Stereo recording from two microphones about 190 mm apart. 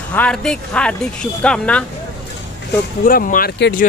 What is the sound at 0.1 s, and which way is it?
Speech, 5° left (ahead or behind).